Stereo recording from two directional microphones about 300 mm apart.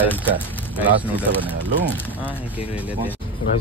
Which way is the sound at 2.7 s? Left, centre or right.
Centre.